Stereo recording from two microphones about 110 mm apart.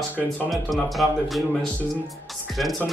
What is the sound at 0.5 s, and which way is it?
Speech, centre (ahead or behind).